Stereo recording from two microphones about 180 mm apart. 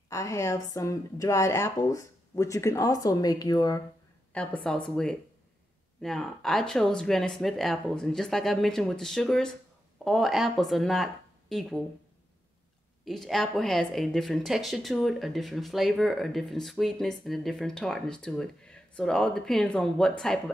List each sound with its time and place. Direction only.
0.1 s speech: 15° left (ahead or behind)
4.3 s a woman's voice: 5° left (ahead or behind)
13.0 s speech: centre (ahead or behind)